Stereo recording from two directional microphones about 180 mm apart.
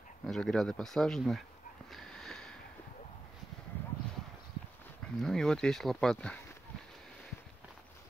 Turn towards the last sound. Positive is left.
turn(degrees=5)  # may be behind; listen again after turning